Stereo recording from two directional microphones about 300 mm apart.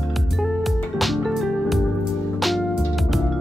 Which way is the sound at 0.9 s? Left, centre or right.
Centre.